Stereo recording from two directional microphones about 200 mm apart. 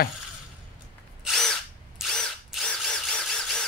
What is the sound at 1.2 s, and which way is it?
Drill, centre (ahead or behind).